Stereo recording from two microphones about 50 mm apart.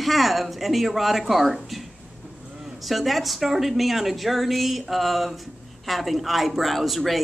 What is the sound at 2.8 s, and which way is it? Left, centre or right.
Speech, centre.